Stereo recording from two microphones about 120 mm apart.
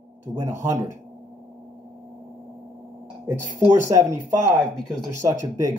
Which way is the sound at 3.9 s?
25° right (ahead or behind).